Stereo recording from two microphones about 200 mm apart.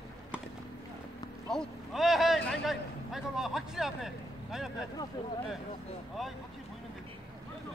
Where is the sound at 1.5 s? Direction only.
Centre (ahead or behind).